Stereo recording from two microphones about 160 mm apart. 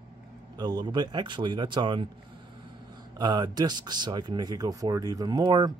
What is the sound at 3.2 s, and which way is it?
Speech, 25° right (ahead or behind).